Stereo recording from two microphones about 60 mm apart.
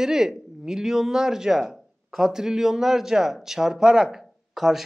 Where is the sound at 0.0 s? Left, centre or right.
Centre.